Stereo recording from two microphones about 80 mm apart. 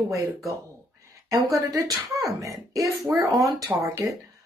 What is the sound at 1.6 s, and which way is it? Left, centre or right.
Speech, right.